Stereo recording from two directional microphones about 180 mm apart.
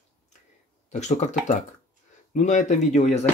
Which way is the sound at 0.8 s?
40° left (ahead or behind).